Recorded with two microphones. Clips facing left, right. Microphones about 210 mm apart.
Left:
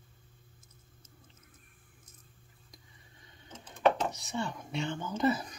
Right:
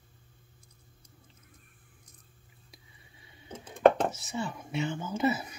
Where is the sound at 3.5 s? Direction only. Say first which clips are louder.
Right 5 dB; 50° right (ahead or behind).